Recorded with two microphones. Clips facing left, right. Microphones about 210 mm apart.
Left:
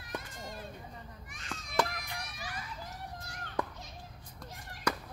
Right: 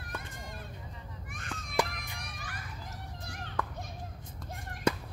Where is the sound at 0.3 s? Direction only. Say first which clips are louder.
Left 1 dB; 55° right (ahead or behind).